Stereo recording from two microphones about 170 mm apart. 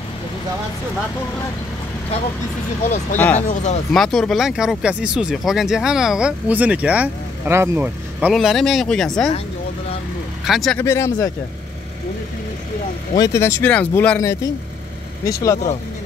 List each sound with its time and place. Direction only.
3.3 s speech: 40° left (ahead or behind)
3.9 s speech: 5° left (ahead or behind)
10.4 s speech: centre (ahead or behind)
10.8 s speech: 15° left (ahead or behind)
13.2 s speech: 15° left (ahead or behind)